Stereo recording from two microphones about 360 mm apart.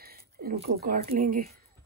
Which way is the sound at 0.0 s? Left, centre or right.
Right.